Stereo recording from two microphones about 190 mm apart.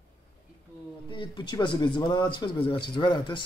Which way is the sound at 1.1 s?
25° left (ahead or behind).